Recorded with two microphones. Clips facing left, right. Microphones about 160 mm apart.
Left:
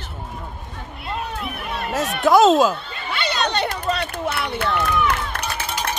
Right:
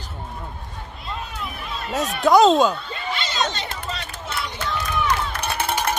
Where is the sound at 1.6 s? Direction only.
60° left (ahead or behind).